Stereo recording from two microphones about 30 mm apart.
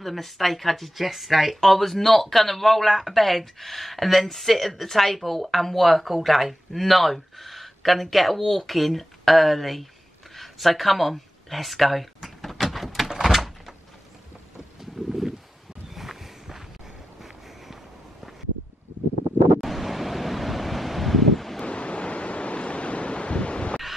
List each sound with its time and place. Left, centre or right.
0.0 s speech: centre
12.4 s a sound: centre
13.2 s door: centre
15.0 s a sound: centre
19.6 s waves: centre
21.6 s waves: left